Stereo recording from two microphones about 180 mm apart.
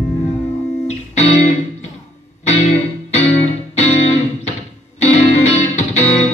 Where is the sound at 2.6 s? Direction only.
40° left (ahead or behind).